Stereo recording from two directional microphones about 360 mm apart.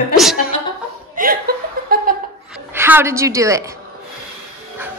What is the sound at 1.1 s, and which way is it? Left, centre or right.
Chuckle, right.